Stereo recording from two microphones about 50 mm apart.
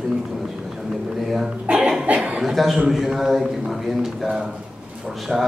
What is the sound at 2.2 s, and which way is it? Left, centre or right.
Chuckle, centre.